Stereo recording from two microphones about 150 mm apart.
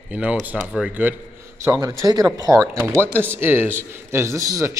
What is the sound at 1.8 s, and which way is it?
A man's voice, 25° right (ahead or behind).